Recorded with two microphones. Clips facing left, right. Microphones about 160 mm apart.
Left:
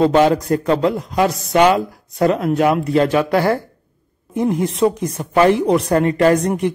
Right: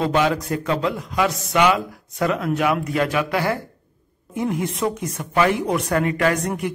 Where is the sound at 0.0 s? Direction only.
35° left (ahead or behind).